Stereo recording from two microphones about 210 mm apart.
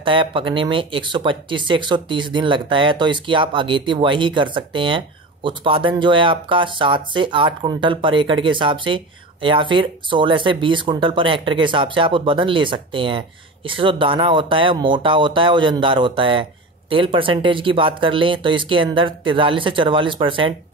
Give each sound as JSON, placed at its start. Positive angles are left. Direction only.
{"t": 0.0, "sound": "speech", "side_deg": -25}